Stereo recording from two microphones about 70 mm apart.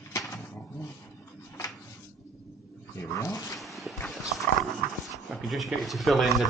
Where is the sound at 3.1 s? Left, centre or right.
Left.